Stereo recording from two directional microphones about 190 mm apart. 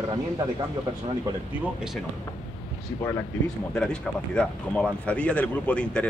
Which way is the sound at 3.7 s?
5° left (ahead or behind).